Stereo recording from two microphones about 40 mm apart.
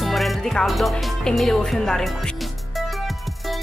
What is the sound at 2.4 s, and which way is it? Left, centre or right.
Music, centre.